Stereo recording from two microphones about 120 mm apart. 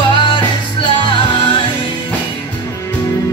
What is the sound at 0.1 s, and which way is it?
Music, 40° left (ahead or behind).